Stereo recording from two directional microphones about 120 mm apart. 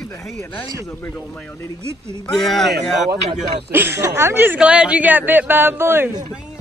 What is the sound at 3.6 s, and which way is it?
Speech, 20° right (ahead or behind).